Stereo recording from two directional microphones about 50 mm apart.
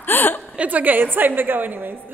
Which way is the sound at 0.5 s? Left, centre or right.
Right.